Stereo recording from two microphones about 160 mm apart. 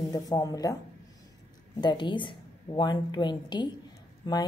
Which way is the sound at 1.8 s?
30° left (ahead or behind).